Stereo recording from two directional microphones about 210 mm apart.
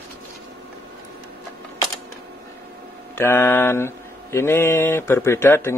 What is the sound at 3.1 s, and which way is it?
Mantra, 10° left (ahead or behind).